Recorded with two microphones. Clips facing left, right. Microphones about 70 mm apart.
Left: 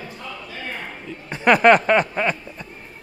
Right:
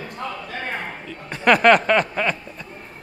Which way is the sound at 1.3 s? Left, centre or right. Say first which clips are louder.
Left 1 dB; centre.